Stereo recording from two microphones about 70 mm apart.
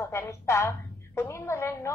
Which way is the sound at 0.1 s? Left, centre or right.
Left.